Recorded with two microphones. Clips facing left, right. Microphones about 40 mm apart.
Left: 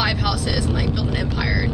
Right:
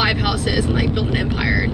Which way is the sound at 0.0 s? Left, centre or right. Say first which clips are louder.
Right 3 dB; right.